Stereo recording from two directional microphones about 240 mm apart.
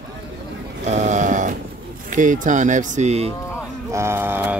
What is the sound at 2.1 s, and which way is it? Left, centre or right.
Speech, right.